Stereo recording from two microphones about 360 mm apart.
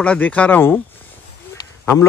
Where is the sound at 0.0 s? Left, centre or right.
Centre.